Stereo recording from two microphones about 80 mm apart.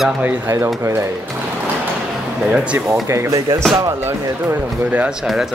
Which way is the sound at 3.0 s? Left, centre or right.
Right.